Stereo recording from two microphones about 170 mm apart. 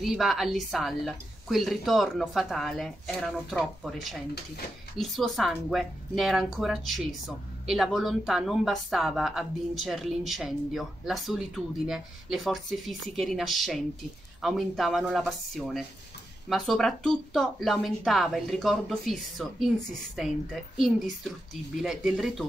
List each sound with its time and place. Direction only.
0.0 s speech: centre (ahead or behind)
21.8 s speech: centre (ahead or behind)